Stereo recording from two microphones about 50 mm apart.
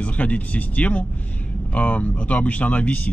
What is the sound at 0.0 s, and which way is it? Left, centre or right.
A man's voice, left.